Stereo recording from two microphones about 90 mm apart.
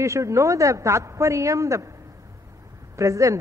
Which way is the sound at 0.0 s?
35° right (ahead or behind).